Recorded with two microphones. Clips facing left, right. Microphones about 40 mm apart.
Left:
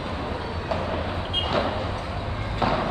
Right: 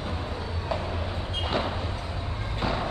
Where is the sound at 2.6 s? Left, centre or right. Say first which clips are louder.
Left 5 dB; left.